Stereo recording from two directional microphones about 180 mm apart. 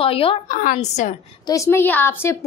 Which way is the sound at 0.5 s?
45° left (ahead or behind).